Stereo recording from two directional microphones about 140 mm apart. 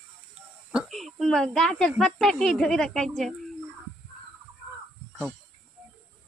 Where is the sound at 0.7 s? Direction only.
Centre (ahead or behind).